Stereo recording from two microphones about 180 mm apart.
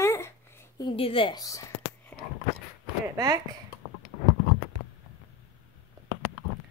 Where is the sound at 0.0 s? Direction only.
15° left (ahead or behind).